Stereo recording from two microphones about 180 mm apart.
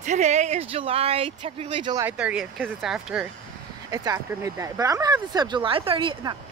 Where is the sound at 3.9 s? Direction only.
20° right (ahead or behind).